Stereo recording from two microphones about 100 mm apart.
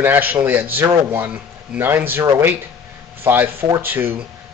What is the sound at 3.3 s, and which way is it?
Speech, 20° right (ahead or behind).